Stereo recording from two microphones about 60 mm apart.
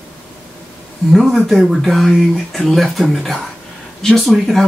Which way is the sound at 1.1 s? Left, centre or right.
Centre.